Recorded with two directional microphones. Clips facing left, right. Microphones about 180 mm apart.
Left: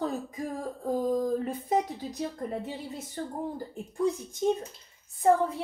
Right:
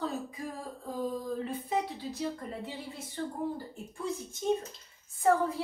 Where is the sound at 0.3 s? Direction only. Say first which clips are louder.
Left 5 dB; 50° left (ahead or behind).